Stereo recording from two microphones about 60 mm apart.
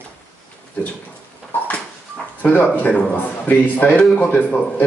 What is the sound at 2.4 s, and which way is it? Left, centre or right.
A man's voice, left.